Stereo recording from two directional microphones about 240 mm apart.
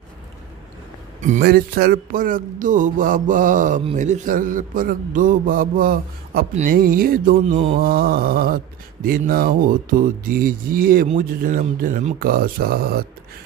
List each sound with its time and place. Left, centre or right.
1.2 s speech: right
7.5 s mantra: right
7.8 s speech: right